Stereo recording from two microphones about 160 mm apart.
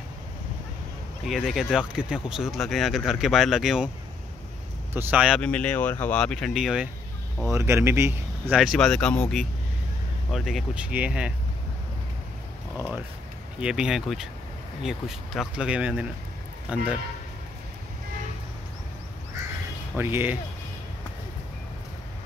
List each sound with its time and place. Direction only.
1.2 s speech: centre (ahead or behind)
4.9 s speech: 5° right (ahead or behind)
5.4 s speech: 10° left (ahead or behind)
7.5 s speech: 15° right (ahead or behind)
8.5 s speech: centre (ahead or behind)
10.3 s speech: centre (ahead or behind)
13.6 s speech: 5° right (ahead or behind)
20.0 s speech: 15° right (ahead or behind)